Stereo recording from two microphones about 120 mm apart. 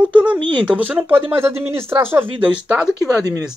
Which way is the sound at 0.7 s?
15° right (ahead or behind).